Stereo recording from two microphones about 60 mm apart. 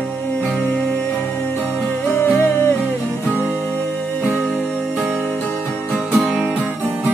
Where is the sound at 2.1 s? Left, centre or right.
Left.